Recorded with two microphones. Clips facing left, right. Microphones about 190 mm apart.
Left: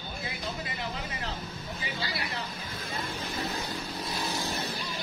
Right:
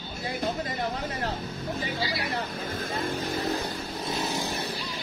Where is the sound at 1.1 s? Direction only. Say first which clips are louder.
Right 6 dB; 50° right (ahead or behind).